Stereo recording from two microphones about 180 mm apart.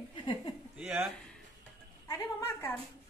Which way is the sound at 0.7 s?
Centre (ahead or behind).